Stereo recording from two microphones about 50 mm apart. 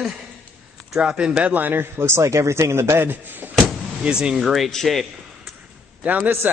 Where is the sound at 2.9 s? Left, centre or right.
Right.